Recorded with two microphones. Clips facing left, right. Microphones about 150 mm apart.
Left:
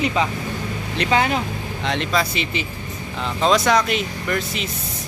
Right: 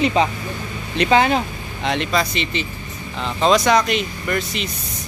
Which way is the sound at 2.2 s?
5° left (ahead or behind).